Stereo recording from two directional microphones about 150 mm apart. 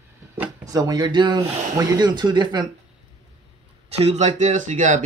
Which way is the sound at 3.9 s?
45° right (ahead or behind).